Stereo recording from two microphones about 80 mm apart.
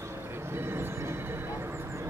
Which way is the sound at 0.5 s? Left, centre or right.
Right.